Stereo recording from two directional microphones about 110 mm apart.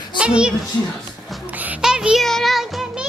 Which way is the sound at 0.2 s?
10° right (ahead or behind).